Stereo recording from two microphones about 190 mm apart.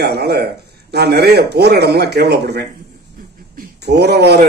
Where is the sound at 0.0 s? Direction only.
60° right (ahead or behind).